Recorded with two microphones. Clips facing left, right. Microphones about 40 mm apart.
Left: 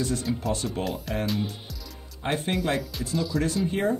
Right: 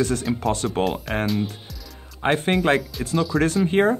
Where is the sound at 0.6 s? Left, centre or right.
Right.